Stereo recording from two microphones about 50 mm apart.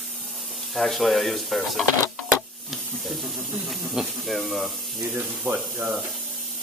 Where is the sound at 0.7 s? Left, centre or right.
Centre.